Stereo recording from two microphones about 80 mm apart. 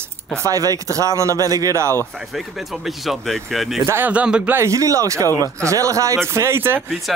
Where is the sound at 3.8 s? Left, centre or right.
Right.